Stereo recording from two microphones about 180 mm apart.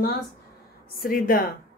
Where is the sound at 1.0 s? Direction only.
50° left (ahead or behind).